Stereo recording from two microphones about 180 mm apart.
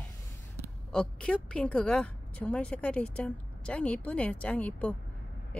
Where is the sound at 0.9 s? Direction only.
5° left (ahead or behind).